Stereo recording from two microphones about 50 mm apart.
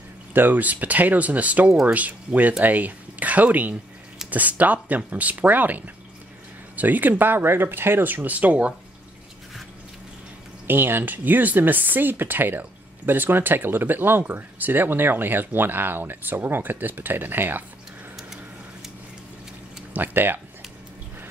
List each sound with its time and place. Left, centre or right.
0.3 s speech: right
10.7 s speech: right
19.9 s speech: right